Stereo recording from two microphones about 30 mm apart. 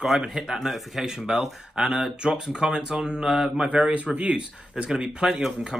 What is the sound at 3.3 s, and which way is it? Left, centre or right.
Speech, centre.